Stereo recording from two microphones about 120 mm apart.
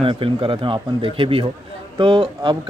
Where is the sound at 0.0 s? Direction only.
45° right (ahead or behind).